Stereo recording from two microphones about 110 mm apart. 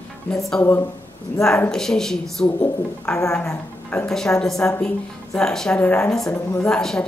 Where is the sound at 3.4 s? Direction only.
20° left (ahead or behind).